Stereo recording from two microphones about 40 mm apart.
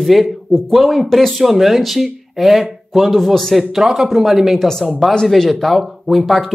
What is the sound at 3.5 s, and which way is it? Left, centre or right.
Speech, centre.